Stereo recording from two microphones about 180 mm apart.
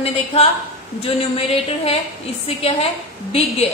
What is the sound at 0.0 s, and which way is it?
A woman's voice, 35° left (ahead or behind).